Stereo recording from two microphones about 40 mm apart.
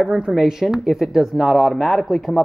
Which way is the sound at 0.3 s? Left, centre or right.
Centre.